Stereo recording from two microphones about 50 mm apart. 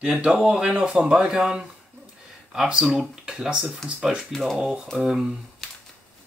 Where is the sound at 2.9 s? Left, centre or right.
Centre.